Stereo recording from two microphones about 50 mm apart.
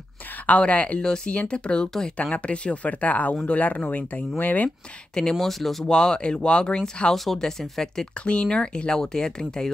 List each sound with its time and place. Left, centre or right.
0.5 s speech: left
5.3 s speech: centre
5.9 s speech: centre